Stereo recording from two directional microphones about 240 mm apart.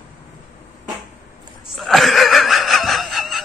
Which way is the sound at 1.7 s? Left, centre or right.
Centre.